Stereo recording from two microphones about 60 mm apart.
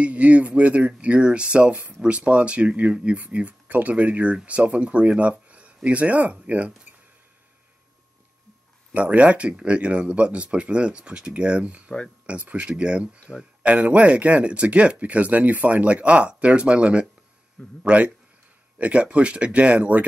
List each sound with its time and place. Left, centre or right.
0.0 s speech: right
8.9 s speech: right